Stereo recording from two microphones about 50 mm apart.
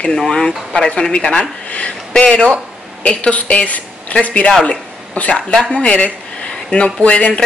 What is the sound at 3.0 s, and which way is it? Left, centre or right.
A woman's voice, left.